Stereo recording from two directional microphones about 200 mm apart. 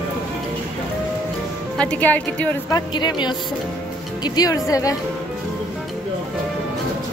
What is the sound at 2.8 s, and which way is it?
A woman's voice, 20° left (ahead or behind).